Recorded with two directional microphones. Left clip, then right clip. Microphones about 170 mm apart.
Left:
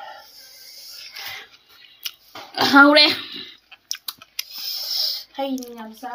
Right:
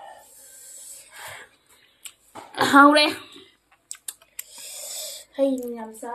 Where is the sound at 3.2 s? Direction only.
60° left (ahead or behind).